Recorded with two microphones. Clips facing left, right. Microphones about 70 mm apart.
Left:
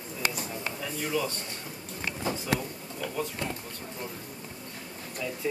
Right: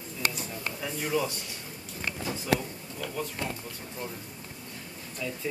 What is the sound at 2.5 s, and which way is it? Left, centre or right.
Speech, centre.